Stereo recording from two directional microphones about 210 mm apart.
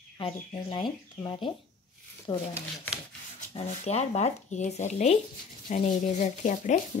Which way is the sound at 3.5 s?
30° left (ahead or behind).